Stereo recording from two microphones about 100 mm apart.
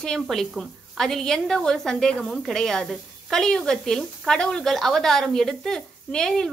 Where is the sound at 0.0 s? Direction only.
5° left (ahead or behind).